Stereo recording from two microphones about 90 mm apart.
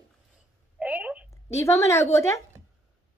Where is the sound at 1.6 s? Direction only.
35° left (ahead or behind).